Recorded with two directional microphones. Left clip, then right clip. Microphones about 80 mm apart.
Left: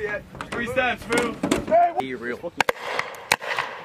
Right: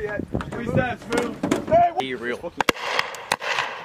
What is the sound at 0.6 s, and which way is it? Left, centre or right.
Speech, left.